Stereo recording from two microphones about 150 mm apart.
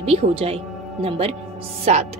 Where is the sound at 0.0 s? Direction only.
45° right (ahead or behind).